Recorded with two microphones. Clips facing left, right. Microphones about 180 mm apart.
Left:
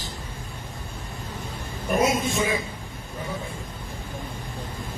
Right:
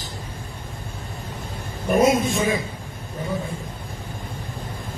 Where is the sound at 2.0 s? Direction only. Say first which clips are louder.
Right 5 dB; 45° right (ahead or behind).